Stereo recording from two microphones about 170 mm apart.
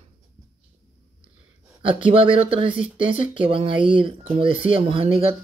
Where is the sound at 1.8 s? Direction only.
30° right (ahead or behind).